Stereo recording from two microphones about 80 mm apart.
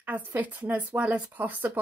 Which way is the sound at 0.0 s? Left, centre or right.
Right.